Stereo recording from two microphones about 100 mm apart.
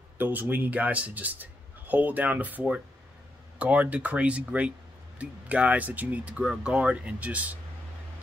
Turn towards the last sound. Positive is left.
turn(degrees=-15)  # may be behind; listen again after turning